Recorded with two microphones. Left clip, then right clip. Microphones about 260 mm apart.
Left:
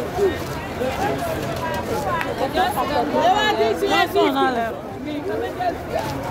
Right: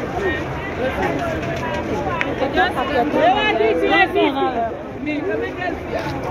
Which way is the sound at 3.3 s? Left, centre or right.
Left.